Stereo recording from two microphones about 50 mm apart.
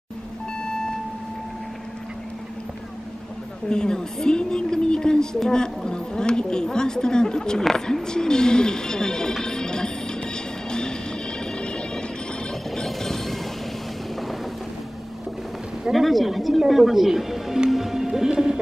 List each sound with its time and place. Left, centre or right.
0.6 s a sound: centre
3.6 s speech: centre
9.4 s music: centre
12.7 s music: centre
15.9 s speech: centre
17.6 s music: centre